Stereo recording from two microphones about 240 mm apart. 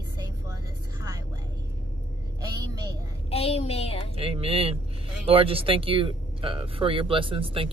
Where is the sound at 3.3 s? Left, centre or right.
Left.